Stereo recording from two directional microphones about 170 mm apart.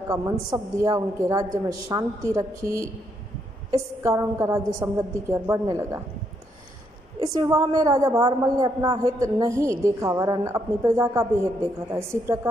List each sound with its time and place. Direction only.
0.1 s a woman's voice: 20° right (ahead or behind)
4.0 s a woman's voice: 15° right (ahead or behind)
7.2 s a woman's voice: 20° right (ahead or behind)